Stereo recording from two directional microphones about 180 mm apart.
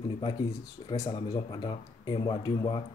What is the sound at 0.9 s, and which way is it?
Speech, 20° left (ahead or behind).